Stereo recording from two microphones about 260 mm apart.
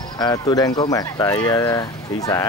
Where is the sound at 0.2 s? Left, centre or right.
Centre.